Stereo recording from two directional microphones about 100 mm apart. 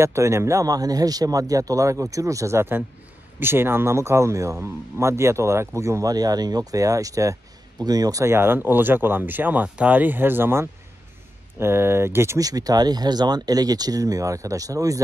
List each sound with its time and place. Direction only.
0.0 s a man's voice: 30° right (ahead or behind)